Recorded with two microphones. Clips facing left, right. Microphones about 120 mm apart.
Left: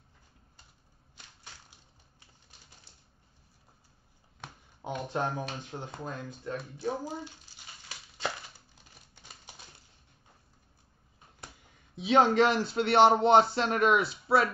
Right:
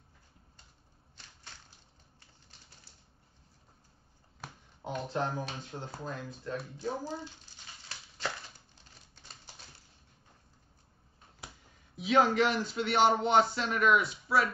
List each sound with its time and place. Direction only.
1.1 s crushing: 10° left (ahead or behind)
4.9 s speech: 15° left (ahead or behind)
6.6 s a sound: 10° left (ahead or behind)
11.9 s speech: 25° left (ahead or behind)